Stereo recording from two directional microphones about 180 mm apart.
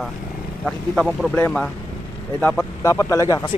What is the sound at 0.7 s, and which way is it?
Speech, centre (ahead or behind).